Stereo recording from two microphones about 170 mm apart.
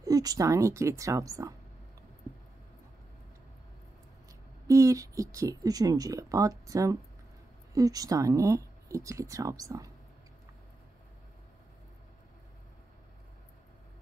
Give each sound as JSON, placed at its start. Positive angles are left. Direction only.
{"t": 0.0, "sound": "speech", "side_deg": -20}
{"t": 4.6, "sound": "speech", "side_deg": -20}